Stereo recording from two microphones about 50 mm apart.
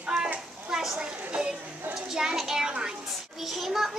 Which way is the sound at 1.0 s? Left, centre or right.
Centre.